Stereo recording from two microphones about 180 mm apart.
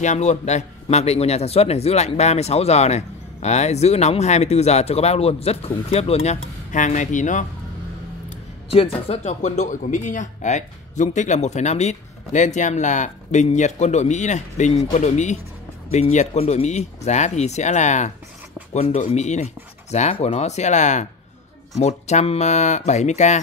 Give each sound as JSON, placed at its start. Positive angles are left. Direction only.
{"t": 0.0, "sound": "a man's voice", "side_deg": 40}
{"t": 8.3, "sound": "a man's voice", "side_deg": 30}